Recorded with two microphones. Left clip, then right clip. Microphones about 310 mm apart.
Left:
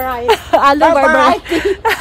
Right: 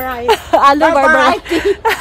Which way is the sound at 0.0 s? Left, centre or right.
Centre.